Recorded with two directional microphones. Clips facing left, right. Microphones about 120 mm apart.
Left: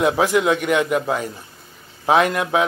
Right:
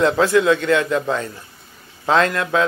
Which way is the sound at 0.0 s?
15° left (ahead or behind).